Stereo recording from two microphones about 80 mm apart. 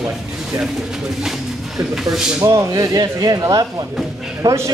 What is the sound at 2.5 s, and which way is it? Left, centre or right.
Speech, right.